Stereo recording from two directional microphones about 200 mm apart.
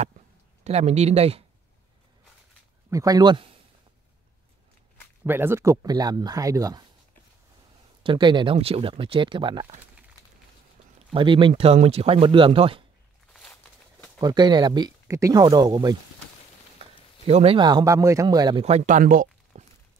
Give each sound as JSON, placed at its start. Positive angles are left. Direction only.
{"t": 0.7, "sound": "speech", "side_deg": -30}
{"t": 2.9, "sound": "speech", "side_deg": -15}
{"t": 5.2, "sound": "speech", "side_deg": -10}
{"t": 8.0, "sound": "speech", "side_deg": -25}
{"t": 11.1, "sound": "speech", "side_deg": -25}
{"t": 13.3, "sound": "a sound", "side_deg": 5}
{"t": 14.2, "sound": "speech", "side_deg": -20}
{"t": 17.3, "sound": "speech", "side_deg": -30}